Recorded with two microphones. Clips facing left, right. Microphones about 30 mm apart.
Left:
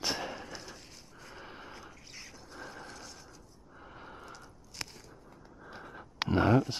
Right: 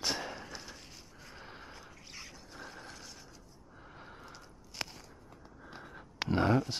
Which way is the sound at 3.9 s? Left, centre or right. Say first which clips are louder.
Left 3 dB; centre.